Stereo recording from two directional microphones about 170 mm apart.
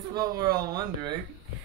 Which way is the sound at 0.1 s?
25° right (ahead or behind).